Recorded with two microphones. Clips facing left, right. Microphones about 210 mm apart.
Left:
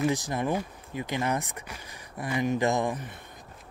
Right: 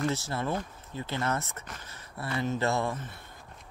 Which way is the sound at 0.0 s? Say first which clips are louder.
Left 3 dB; 15° left (ahead or behind).